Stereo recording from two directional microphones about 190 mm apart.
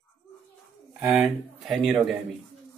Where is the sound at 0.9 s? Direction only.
5° right (ahead or behind).